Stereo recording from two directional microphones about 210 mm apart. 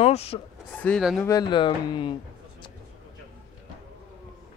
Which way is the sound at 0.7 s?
5° left (ahead or behind).